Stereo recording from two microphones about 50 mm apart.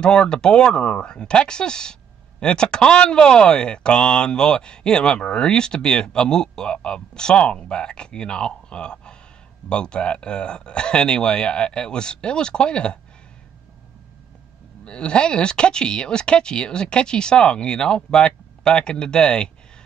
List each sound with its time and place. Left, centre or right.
0.0 s speech: centre
14.9 s speech: centre